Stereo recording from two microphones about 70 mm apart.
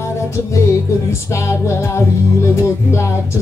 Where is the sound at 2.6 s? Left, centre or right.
Left.